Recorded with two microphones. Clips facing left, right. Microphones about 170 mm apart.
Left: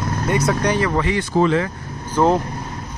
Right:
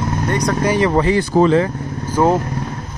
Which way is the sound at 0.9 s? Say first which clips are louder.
Right 5 dB; 35° right (ahead or behind).